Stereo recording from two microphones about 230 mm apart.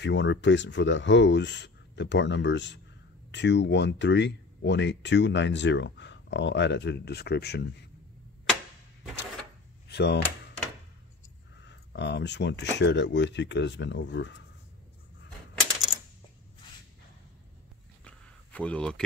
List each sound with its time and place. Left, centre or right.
0.0 s speech: left
9.8 s speech: left
11.6 s speech: left
18.0 s a sound: centre